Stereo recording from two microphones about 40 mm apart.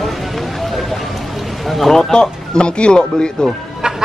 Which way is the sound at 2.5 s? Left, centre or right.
Left.